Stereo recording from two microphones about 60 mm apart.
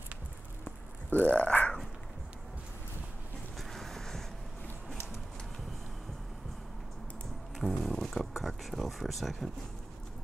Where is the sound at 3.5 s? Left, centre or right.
Centre.